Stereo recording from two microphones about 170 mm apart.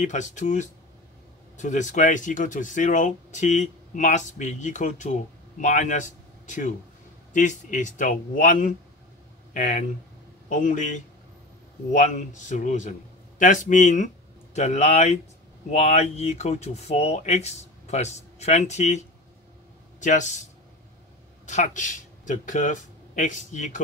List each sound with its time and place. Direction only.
0.0 s speech: 45° left (ahead or behind)
21.5 s speech: 45° left (ahead or behind)